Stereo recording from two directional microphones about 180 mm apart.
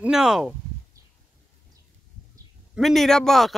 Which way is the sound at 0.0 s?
5° right (ahead or behind).